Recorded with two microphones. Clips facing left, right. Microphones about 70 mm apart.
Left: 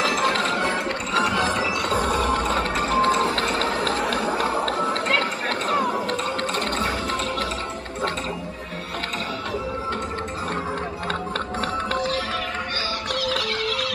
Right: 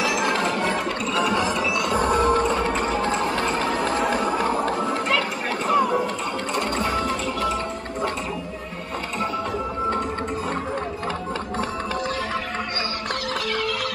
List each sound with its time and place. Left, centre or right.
0.2 s a sound: centre
1.3 s music: left
1.6 s music: left
2.0 s music: right
3.0 s music: left
3.5 s a sound: centre